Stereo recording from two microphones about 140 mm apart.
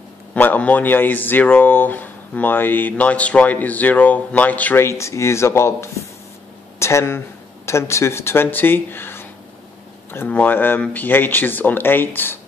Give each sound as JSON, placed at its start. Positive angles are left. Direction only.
{"t": 0.3, "sound": "speech", "side_deg": 10}